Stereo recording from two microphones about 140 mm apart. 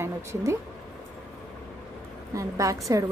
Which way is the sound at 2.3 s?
20° right (ahead or behind).